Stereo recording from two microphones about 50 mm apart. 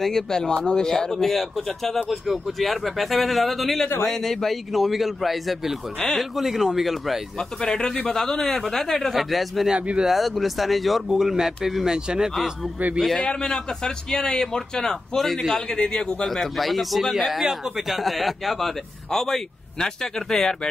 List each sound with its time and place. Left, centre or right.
0.0 s a man's voice: centre
7.3 s a man's voice: centre
9.1 s speech: centre
13.3 s a man's voice: centre
16.3 s a man's voice: centre